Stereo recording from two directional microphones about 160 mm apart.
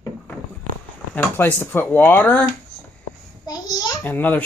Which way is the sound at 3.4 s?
25° left (ahead or behind).